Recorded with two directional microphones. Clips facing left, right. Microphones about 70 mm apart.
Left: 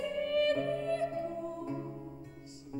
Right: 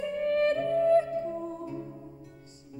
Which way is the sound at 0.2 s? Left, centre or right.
Right.